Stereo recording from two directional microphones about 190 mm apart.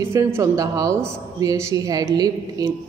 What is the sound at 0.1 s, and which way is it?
A man's voice, 15° right (ahead or behind).